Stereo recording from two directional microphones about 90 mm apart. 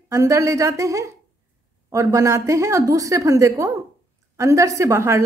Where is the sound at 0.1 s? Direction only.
35° right (ahead or behind).